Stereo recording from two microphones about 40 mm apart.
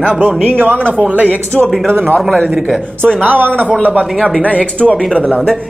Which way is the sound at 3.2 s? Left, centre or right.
Right.